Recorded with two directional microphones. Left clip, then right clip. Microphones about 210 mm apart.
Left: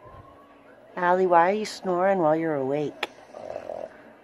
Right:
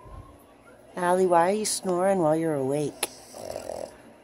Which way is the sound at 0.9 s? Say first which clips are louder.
Left 2 dB; 10° right (ahead or behind).